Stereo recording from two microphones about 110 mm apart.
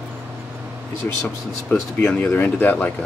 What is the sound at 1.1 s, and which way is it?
Speech, 15° left (ahead or behind).